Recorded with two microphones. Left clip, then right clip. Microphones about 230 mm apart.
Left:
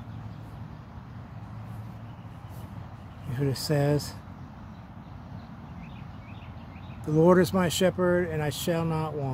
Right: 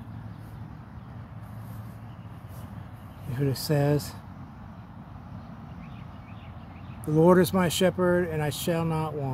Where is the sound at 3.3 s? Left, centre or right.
Centre.